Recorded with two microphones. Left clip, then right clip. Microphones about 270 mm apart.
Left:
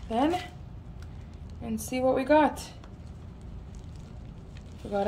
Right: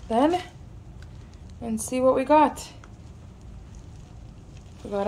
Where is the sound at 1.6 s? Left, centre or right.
Centre.